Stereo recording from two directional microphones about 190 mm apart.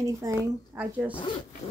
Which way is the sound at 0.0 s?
15° right (ahead or behind).